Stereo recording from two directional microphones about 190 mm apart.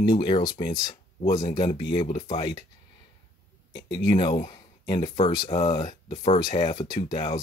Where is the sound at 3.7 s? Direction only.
60° left (ahead or behind).